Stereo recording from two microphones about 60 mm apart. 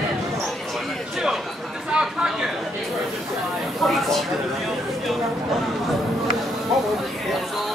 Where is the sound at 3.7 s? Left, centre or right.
Centre.